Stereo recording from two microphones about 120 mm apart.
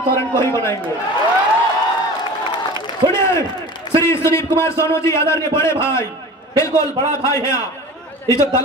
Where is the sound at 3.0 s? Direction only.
30° right (ahead or behind).